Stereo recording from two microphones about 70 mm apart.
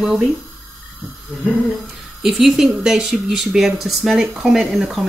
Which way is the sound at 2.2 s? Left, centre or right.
Centre.